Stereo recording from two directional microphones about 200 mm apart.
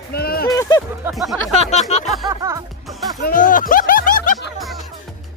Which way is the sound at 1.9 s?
35° left (ahead or behind).